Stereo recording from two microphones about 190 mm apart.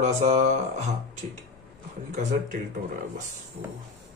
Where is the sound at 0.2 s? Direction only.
35° right (ahead or behind).